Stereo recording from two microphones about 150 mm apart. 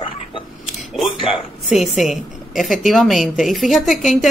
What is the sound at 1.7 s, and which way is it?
A woman's voice, centre (ahead or behind).